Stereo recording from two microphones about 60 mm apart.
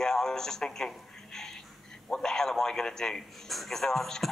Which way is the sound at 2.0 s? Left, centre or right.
Centre.